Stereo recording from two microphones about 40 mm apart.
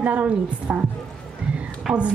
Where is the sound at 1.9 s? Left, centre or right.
Right.